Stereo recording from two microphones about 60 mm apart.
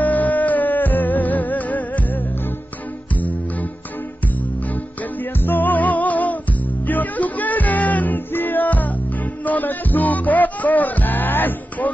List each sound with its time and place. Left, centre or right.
0.0 s music: left
5.4 s music: left